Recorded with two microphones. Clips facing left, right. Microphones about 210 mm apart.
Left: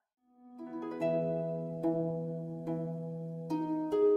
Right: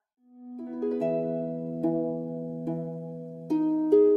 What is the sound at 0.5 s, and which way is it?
Harp, 35° right (ahead or behind).